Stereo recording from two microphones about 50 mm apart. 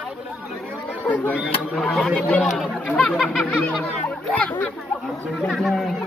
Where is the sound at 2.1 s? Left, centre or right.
Left.